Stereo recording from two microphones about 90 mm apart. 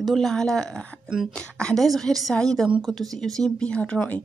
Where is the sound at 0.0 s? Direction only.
Centre (ahead or behind).